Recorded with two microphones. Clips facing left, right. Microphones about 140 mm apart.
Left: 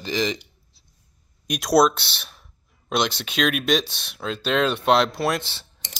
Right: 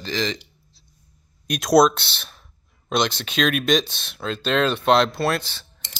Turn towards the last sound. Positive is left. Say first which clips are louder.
# left 1 dB
turn(degrees=30)  # may be behind; listen again after turning